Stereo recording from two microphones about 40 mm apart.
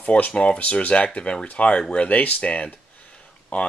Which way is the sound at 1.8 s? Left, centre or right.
Centre.